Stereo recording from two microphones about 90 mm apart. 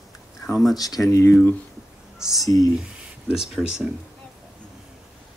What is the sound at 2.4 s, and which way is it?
Speech, 40° left (ahead or behind).